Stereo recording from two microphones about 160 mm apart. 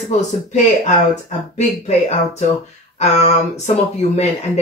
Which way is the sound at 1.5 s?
45° left (ahead or behind).